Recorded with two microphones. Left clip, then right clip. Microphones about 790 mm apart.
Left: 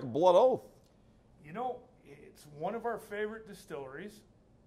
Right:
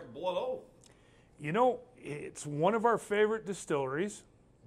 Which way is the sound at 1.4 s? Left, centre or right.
Right.